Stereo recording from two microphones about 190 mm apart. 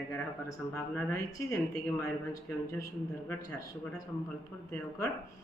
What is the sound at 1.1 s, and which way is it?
A woman's voice, 15° left (ahead or behind).